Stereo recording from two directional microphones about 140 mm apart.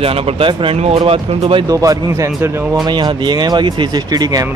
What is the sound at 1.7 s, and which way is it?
Speech, 25° right (ahead or behind).